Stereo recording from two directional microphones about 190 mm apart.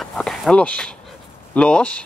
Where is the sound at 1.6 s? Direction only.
5° left (ahead or behind).